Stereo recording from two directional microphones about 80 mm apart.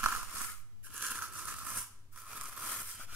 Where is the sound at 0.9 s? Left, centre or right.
Centre.